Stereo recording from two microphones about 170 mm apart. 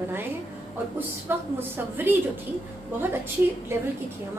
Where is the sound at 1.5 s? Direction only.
10° right (ahead or behind).